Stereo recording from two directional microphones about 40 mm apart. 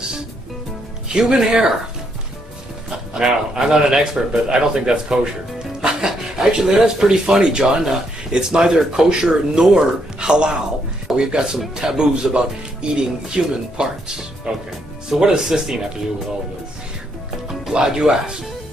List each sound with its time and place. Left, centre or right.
1.0 s speech: centre
3.2 s speech: centre
5.8 s dog: centre
6.8 s speech: centre
17.7 s speech: centre